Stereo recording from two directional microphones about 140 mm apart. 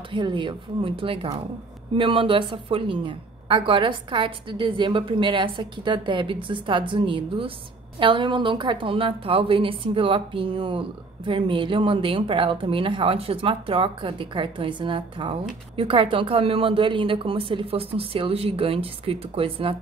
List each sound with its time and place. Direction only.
0.1 s a woman's voice: 35° right (ahead or behind)